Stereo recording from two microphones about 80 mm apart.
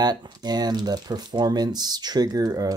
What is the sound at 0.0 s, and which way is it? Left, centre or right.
Speech, right.